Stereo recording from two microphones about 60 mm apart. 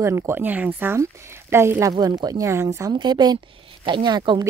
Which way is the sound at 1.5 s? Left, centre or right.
Right.